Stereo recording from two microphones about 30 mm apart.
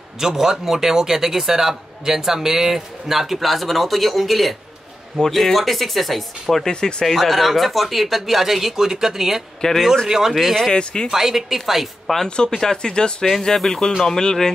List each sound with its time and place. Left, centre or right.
0.2 s speech: centre
6.7 s speech: left
7.2 s speech: centre
9.6 s speech: left
10.0 s speech: centre
10.3 s speech: centre
10.7 s speech: left
11.1 s speech: centre
12.3 s speech: left